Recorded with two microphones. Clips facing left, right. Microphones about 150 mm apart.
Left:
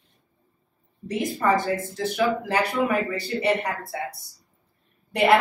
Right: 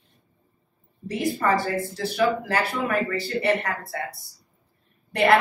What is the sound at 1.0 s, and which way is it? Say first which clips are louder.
Speech: even; 20° left (ahead or behind).